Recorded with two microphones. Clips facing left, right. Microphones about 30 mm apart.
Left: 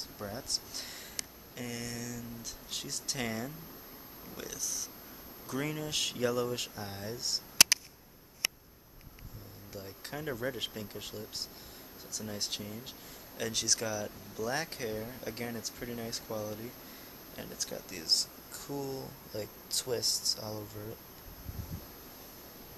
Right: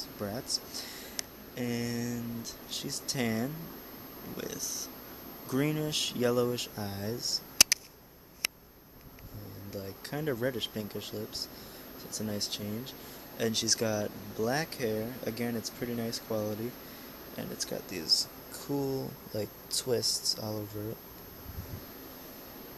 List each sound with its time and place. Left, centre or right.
0.2 s speech: centre
5.5 s speech: centre
9.7 s speech: centre